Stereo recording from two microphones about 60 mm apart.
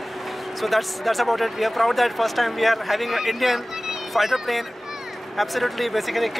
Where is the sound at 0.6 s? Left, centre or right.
Centre.